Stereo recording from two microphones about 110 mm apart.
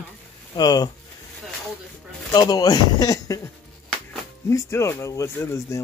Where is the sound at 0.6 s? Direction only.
35° left (ahead or behind).